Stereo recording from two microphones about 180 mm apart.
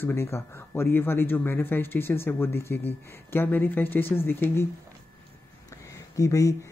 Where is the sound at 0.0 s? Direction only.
15° left (ahead or behind).